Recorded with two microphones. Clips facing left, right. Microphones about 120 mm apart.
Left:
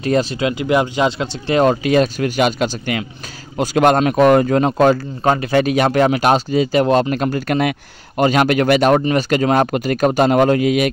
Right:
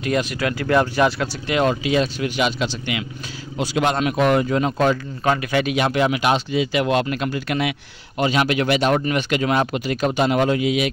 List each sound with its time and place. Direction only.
0.0 s speech: 30° left (ahead or behind)
1.5 s speech: 40° left (ahead or behind)